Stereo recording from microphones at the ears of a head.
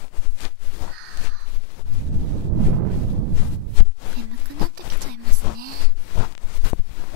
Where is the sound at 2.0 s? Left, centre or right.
Right.